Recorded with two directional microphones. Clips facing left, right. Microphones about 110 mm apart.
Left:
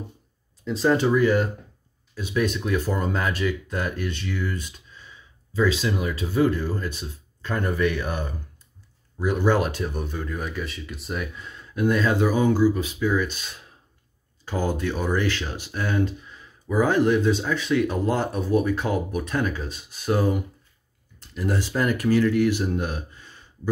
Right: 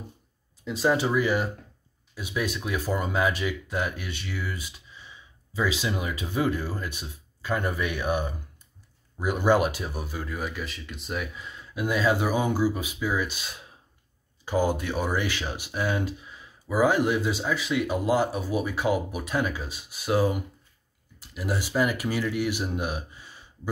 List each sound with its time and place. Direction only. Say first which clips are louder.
0.7 s speech: left 4 dB; 5° right (ahead or behind)